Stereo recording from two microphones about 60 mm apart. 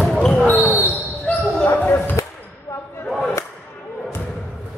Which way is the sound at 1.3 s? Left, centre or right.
Centre.